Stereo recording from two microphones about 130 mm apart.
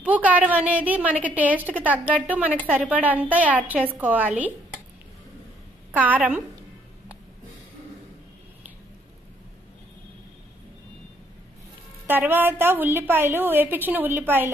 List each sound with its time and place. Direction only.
0.0 s a woman's voice: 10° right (ahead or behind)
5.9 s a woman's voice: 10° right (ahead or behind)
12.1 s a woman's voice: 15° right (ahead or behind)